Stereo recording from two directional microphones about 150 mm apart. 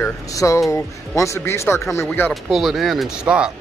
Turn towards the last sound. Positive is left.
turn(degrees=-5)  # may be behind; listen again after turning